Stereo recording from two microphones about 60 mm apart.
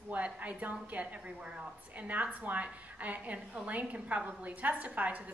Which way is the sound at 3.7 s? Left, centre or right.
Right.